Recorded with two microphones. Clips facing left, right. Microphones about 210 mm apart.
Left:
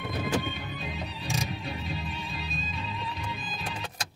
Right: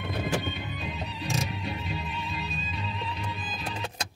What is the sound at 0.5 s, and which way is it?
Music, 45° left (ahead or behind).